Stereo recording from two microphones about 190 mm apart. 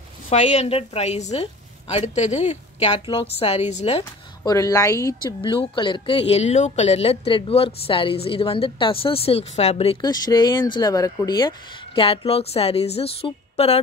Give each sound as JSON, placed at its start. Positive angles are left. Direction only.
{"t": 0.3, "sound": "a woman's voice", "side_deg": 35}
{"t": 4.0, "sound": "speech", "side_deg": 15}